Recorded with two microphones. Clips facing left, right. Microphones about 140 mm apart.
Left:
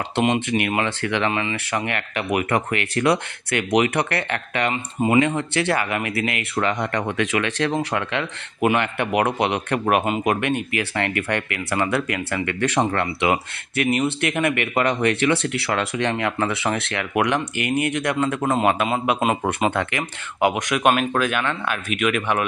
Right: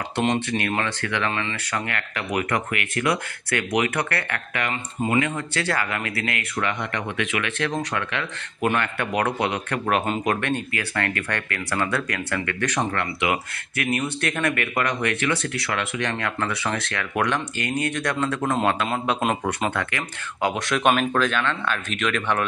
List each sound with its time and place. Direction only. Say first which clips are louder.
0.5 s speech: left 3 dB; 15° left (ahead or behind)
6.8 s speech: left 4 dB; 35° left (ahead or behind)
8.5 s speech: left 3 dB; 15° left (ahead or behind); by 16.1 s 30° left (ahead or behind)
16.1 s speech: left 4 dB; 20° left (ahead or behind)
20.8 s speech: left 1 dB; 5° left (ahead or behind)